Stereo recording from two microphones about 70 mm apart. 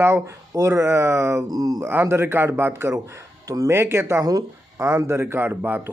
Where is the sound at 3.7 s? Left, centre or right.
Right.